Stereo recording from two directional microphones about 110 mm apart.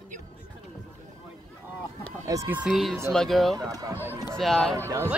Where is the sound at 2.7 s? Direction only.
Centre (ahead or behind).